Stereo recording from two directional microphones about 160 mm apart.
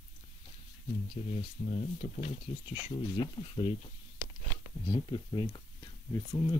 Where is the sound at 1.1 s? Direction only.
35° left (ahead or behind).